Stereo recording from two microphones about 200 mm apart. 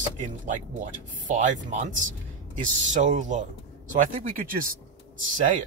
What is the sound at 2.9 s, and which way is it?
Speech, 40° right (ahead or behind).